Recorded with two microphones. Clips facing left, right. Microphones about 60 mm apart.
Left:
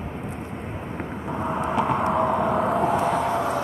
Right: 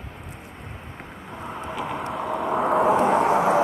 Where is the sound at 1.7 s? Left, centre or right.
Centre.